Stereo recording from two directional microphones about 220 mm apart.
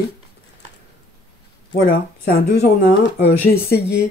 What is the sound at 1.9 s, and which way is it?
Speech, 45° left (ahead or behind).